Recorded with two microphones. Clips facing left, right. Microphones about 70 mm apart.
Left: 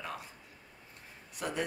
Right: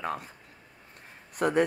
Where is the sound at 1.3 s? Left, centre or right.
Right.